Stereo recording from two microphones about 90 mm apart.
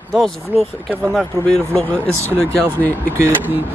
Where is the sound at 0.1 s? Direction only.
Centre (ahead or behind).